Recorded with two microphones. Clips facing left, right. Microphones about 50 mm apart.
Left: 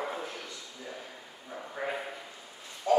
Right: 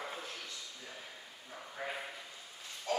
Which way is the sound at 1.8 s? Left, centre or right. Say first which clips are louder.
Left 6 dB; left.